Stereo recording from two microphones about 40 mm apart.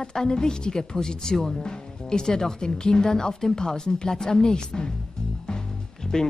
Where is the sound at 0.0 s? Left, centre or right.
Centre.